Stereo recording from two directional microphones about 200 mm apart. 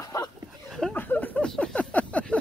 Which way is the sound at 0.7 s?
5° left (ahead or behind).